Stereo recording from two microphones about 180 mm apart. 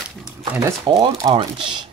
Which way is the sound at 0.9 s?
20° right (ahead or behind).